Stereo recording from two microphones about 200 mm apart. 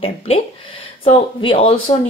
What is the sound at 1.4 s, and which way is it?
Speech, 25° left (ahead or behind).